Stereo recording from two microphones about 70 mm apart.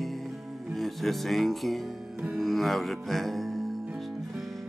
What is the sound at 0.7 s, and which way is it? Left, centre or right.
Speech, centre.